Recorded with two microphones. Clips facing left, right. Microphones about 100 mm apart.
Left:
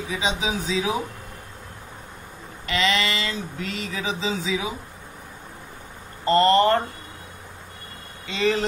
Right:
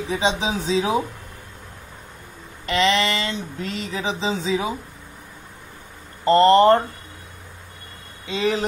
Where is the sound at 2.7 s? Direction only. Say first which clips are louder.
Right 4 dB; 35° right (ahead or behind).